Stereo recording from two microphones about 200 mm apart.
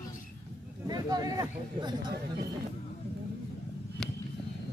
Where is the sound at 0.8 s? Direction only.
20° right (ahead or behind).